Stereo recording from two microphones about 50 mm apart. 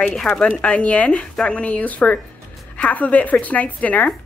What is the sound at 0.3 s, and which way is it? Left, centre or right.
Speech, left.